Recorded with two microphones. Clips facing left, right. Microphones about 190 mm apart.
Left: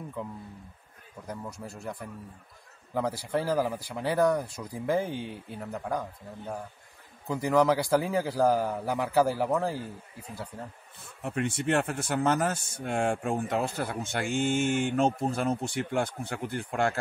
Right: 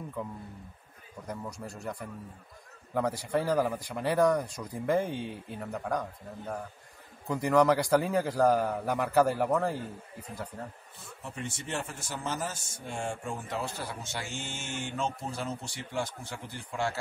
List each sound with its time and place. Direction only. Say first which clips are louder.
1.2 s speech: even; 5° left (ahead or behind)
2.9 s speech: even; 5° left (ahead or behind)
11.2 s speech: left 10 dB; 60° left (ahead or behind)